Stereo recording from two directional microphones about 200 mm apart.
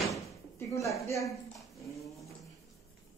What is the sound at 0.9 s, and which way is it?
Speech, 15° left (ahead or behind).